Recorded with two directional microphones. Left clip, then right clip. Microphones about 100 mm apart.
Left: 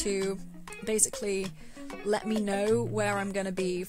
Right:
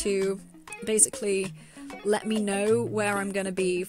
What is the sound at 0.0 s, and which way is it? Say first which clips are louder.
Speech: right 4 dB; 35° right (ahead or behind).